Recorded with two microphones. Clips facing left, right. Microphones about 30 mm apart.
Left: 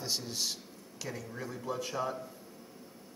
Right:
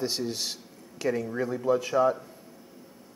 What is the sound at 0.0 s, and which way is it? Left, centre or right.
Speech, right.